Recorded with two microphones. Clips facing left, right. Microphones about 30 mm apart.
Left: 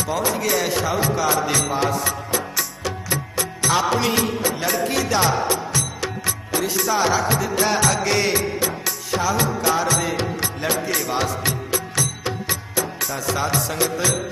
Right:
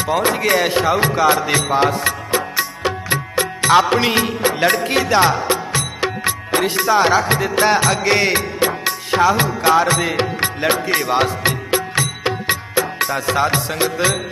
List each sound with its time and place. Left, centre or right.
0.0 s music: right